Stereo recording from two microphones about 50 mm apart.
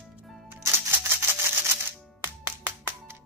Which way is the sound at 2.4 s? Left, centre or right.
Right.